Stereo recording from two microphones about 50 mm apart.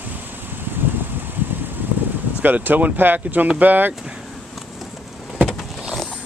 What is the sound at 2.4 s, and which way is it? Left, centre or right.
Speech, right.